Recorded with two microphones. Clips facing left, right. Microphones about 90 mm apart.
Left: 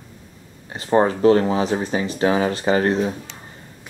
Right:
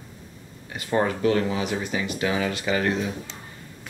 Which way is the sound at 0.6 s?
30° left (ahead or behind).